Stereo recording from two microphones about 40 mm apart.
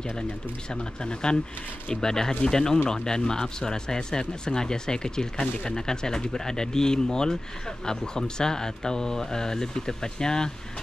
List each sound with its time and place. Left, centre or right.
1.0 s speech: left